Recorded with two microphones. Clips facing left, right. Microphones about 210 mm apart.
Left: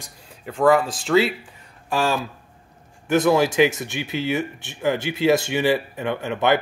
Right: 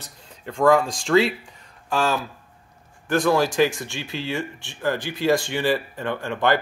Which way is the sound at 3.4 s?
20° left (ahead or behind).